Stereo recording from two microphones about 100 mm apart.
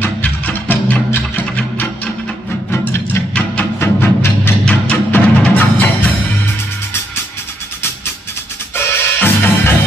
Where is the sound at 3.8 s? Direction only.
20° left (ahead or behind).